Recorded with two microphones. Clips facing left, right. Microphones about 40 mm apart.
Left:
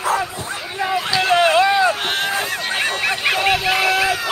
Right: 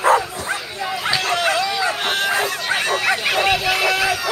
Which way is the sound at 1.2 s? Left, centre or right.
Left.